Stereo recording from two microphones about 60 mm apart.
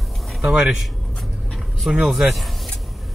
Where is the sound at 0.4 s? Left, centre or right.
Centre.